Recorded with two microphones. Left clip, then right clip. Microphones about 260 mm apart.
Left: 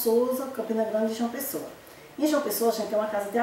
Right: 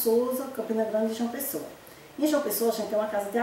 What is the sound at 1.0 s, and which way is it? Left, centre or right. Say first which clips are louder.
A woman's voice: left 1 dB; centre.